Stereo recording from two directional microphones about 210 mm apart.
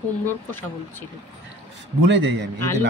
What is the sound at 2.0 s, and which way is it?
Speech, 55° right (ahead or behind).